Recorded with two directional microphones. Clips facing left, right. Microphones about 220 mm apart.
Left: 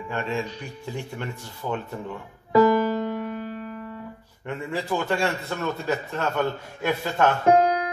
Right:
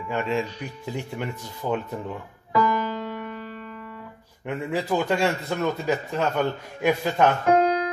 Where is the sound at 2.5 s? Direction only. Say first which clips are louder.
Left 6 dB; 40° left (ahead or behind).